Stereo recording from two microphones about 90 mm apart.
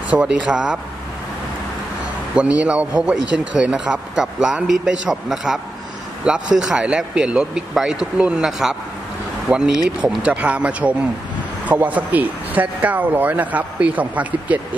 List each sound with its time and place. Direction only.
0.1 s a man's voice: 10° right (ahead or behind)
2.3 s a man's voice: 15° right (ahead or behind)